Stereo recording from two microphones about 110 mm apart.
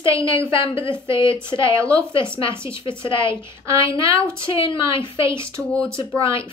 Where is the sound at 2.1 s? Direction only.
50° left (ahead or behind).